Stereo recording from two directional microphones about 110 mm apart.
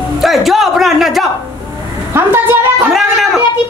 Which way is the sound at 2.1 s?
20° right (ahead or behind).